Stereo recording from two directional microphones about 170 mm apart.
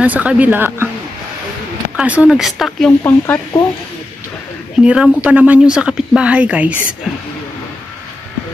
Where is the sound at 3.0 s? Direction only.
15° left (ahead or behind).